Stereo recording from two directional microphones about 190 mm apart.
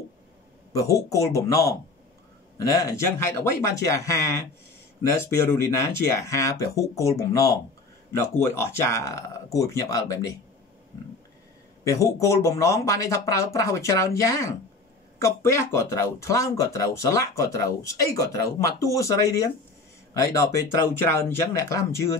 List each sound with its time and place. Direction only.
0.7 s speech: 15° left (ahead or behind)
11.8 s speech: 15° left (ahead or behind)